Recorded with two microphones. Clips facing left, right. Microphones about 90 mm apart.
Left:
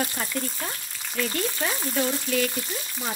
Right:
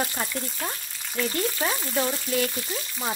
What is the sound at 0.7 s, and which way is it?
Speech, 15° right (ahead or behind).